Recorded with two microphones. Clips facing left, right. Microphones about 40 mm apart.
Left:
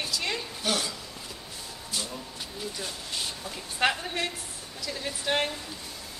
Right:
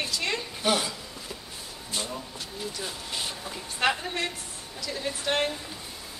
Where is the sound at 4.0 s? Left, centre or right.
Centre.